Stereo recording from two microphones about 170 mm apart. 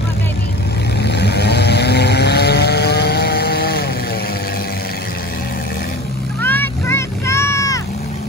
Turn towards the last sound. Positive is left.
turn(degrees=15)  # may be behind; listen again after turning